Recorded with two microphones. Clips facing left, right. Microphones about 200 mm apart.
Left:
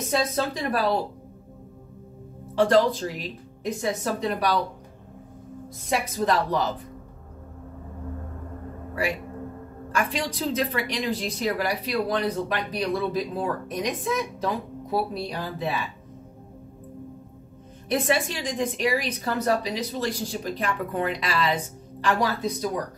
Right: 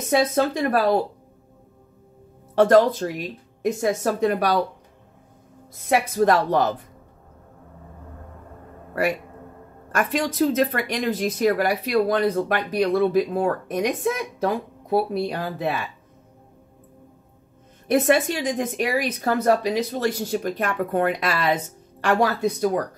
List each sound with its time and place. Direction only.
0.3 s speech: 55° right (ahead or behind)
2.5 s speech: 50° right (ahead or behind)
5.8 s a woman's voice: 55° right (ahead or behind)
9.9 s speech: 50° right (ahead or behind)
17.8 s a woman's voice: 50° right (ahead or behind)